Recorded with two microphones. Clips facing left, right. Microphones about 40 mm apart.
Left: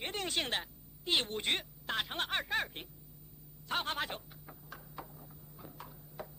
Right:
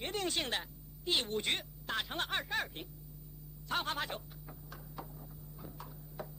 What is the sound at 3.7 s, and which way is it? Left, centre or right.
Speech, left.